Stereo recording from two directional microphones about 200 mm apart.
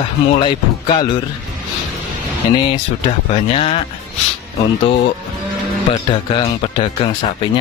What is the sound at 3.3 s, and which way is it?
Speech, 30° left (ahead or behind).